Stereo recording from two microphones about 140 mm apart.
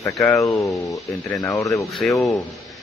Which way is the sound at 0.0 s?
20° left (ahead or behind).